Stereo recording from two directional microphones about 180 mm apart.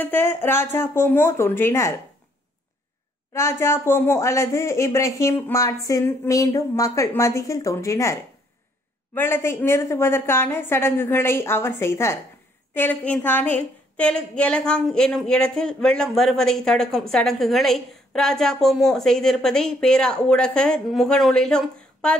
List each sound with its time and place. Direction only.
0.0 s a woman's voice: 10° left (ahead or behind)
3.3 s a woman's voice: 15° left (ahead or behind)